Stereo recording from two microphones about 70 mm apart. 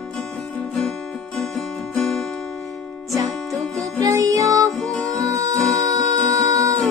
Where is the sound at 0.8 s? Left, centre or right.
Centre.